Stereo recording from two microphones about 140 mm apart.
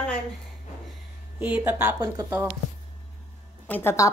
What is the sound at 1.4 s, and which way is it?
Speech, 10° right (ahead or behind).